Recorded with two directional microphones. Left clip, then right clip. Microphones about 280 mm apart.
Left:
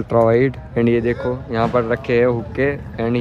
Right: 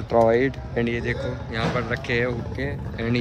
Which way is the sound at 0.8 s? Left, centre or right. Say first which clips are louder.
Left 8 dB; centre.